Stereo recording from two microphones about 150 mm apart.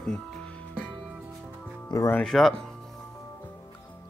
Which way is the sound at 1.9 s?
20° left (ahead or behind).